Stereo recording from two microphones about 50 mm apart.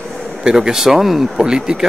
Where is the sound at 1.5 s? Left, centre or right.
Centre.